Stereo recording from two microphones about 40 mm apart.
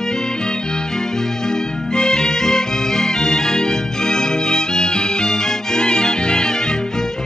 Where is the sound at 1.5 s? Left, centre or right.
Centre.